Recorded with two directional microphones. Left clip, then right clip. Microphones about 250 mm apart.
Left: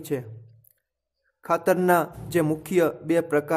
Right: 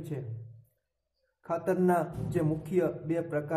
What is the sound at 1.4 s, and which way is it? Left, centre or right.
A man's voice, left.